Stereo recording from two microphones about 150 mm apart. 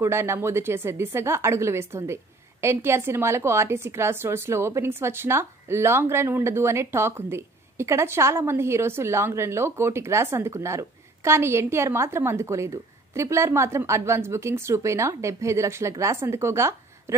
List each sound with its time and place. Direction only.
0.0 s a woman's voice: 15° right (ahead or behind)